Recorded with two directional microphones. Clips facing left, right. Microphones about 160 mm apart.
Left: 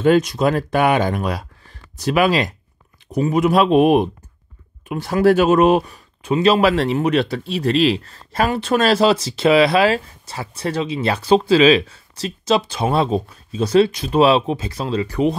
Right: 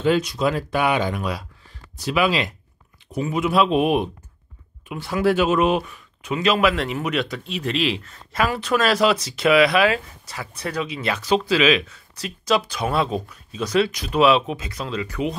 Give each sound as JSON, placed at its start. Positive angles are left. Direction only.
{"t": 0.0, "sound": "speech", "side_deg": 50}